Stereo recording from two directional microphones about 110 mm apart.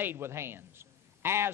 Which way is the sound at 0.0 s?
20° right (ahead or behind).